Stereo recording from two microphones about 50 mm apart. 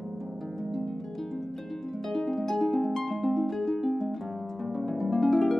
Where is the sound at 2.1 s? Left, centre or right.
Centre.